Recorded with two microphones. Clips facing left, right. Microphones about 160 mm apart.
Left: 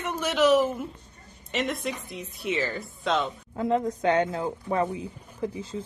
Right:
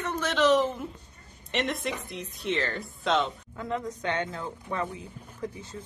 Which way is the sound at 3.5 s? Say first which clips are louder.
Left 8 dB; 30° left (ahead or behind).